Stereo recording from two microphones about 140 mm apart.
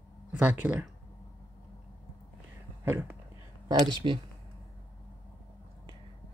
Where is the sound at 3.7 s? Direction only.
30° right (ahead or behind).